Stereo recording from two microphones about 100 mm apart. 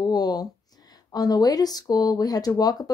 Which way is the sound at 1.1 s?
40° left (ahead or behind).